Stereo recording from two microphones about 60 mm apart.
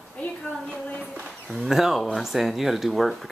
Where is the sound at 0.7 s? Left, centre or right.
Centre.